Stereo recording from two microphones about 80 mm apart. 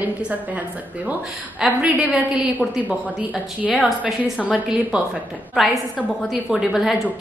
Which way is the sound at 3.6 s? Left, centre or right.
Centre.